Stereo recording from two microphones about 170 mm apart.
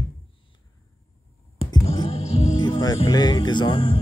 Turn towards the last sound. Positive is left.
turn(degrees=30)  # may be behind; listen again after turning